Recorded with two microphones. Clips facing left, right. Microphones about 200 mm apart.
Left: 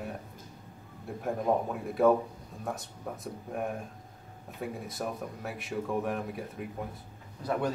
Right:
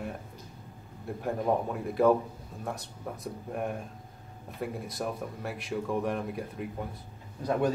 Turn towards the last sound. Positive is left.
turn(degrees=-15)  # may be behind; listen again after turning